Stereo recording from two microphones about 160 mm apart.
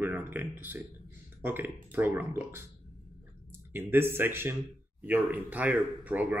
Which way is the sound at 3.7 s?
15° right (ahead or behind).